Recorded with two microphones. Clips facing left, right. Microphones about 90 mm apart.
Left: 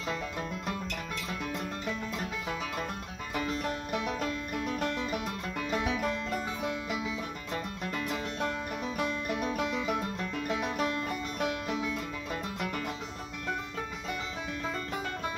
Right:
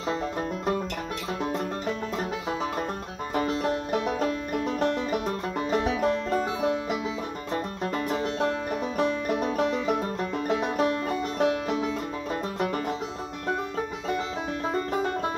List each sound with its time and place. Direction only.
1.4 s music: 35° right (ahead or behind)
3.3 s music: 35° right (ahead or behind)
14.7 s music: 40° right (ahead or behind)